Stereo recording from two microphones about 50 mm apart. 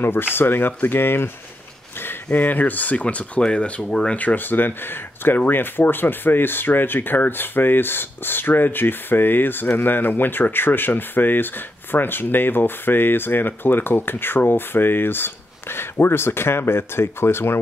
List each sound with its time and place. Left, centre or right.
0.0 s speech: left
2.3 s speech: left; by 4.2 s centre
4.2 s speech: left